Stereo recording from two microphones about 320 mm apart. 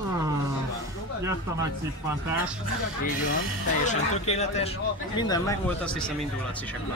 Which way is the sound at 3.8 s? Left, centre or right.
Left.